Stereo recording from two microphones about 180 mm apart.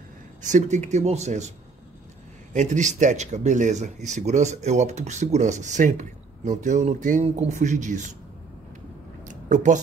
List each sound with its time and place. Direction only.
0.4 s speech: 40° right (ahead or behind)
2.5 s speech: 40° right (ahead or behind)
9.2 s a sound: 45° right (ahead or behind)